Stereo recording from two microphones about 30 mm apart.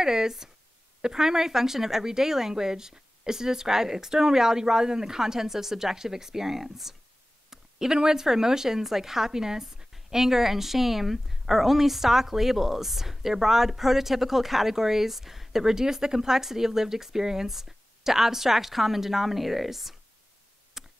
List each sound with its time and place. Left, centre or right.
0.0 s a woman's voice: centre
20.8 s tick: centre